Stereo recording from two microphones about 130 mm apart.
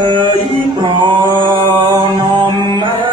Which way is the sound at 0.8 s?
35° right (ahead or behind).